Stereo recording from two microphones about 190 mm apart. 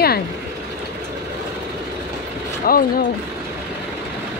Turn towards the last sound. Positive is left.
turn(degrees=50)  # may be behind; listen again after turning